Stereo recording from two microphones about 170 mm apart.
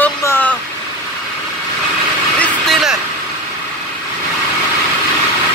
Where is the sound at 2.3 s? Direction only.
5° left (ahead or behind).